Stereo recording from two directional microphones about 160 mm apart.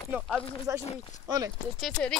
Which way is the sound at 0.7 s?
20° right (ahead or behind).